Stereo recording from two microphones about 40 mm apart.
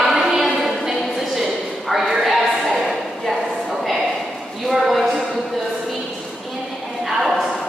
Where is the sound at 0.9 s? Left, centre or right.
Centre.